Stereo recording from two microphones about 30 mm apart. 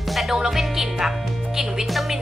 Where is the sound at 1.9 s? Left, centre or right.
Centre.